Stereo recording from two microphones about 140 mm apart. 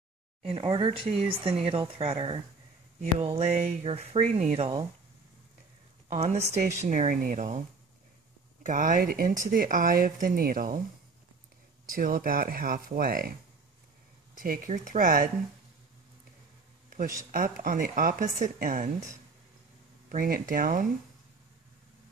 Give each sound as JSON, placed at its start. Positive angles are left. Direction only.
{"t": 0.4, "sound": "speech", "side_deg": -40}
{"t": 6.0, "sound": "speech", "side_deg": -50}
{"t": 6.9, "sound": "speech", "side_deg": -60}
{"t": 8.6, "sound": "speech", "side_deg": -70}
{"t": 11.9, "sound": "speech", "side_deg": -90}
{"t": 14.3, "sound": "speech", "side_deg": -85}
{"t": 16.9, "sound": "speech", "side_deg": -70}
{"t": 20.1, "sound": "speech", "side_deg": -75}